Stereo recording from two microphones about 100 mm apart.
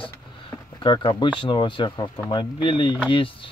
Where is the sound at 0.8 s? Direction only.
50° left (ahead or behind).